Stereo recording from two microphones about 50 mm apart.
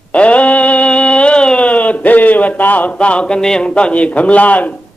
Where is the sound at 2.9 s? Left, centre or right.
Left.